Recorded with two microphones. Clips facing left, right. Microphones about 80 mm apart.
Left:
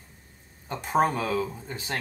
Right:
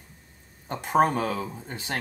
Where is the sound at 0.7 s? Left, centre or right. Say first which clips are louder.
Right 2 dB; right.